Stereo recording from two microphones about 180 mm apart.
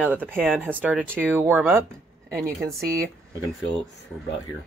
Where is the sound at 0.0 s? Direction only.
10° right (ahead or behind).